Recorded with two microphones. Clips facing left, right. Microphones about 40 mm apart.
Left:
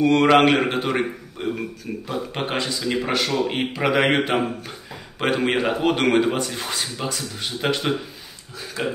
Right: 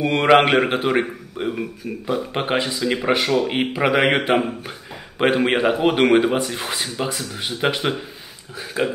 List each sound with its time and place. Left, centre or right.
0.0 s speech: centre